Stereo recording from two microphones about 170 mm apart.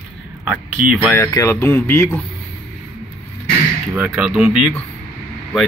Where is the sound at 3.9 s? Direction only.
10° right (ahead or behind).